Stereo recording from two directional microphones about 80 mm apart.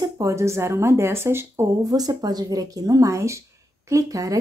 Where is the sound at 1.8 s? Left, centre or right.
Right.